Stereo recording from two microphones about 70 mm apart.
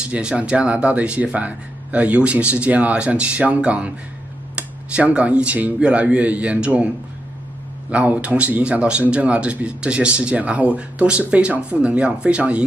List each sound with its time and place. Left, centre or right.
0.0 s speech: centre
7.9 s speech: centre